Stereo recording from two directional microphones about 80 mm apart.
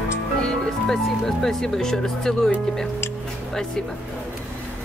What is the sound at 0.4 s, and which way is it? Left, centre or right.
Speech, centre.